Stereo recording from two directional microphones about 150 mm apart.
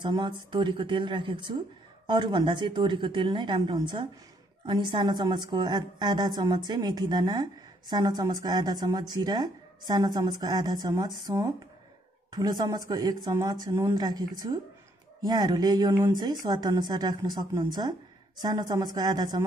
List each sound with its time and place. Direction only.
0.0 s a woman's voice: 30° right (ahead or behind)